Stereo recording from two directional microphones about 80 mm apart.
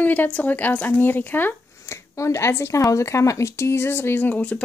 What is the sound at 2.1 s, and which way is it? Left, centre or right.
A woman's voice, left.